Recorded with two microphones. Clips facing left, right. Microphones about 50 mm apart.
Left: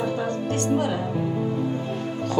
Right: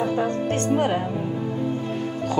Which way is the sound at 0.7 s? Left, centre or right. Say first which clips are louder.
Right 3 dB; right.